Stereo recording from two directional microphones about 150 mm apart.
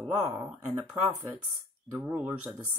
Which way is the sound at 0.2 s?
20° right (ahead or behind).